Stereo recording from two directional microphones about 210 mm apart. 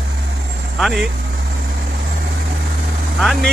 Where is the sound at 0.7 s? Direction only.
Centre (ahead or behind).